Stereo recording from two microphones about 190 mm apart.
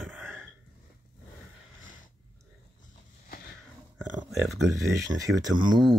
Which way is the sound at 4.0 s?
5° right (ahead or behind).